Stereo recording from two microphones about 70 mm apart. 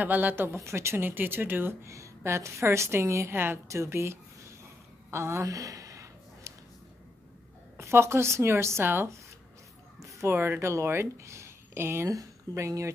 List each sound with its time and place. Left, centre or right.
0.0 s speech: right
0.6 s speech: right
5.1 s a sound: right
7.7 s speech: right
10.3 s speech: right
10.6 s speech: right
12.1 s speech: right